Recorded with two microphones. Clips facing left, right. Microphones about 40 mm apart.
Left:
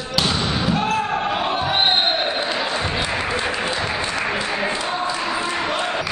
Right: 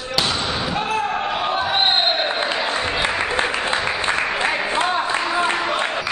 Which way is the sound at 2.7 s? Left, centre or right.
Centre.